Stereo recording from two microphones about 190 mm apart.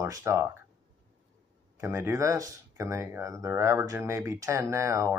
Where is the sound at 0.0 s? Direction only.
15° right (ahead or behind).